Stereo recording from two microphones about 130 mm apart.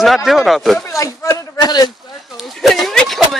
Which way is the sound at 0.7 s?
20° left (ahead or behind).